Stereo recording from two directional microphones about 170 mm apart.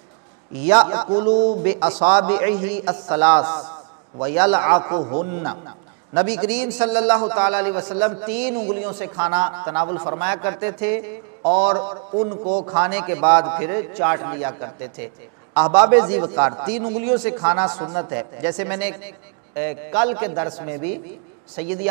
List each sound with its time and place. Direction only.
0.7 s a man's voice: 10° right (ahead or behind)
1.0 s a man's voice: 25° right (ahead or behind)
2.0 s a man's voice: 10° right (ahead or behind)
3.3 s a man's voice: 25° right (ahead or behind)
4.2 s a man's voice: 15° right (ahead or behind)
11.7 s a man's voice: 25° right (ahead or behind)
12.7 s a man's voice: 15° right (ahead or behind)
20.2 s a man's voice: 25° right (ahead or behind)